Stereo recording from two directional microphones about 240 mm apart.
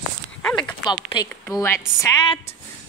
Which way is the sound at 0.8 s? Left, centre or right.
Centre.